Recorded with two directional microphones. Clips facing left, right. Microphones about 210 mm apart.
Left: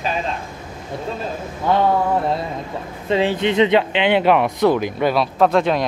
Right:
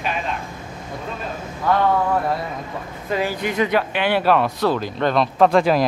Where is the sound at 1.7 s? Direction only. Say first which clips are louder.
Left 1 dB; 25° left (ahead or behind).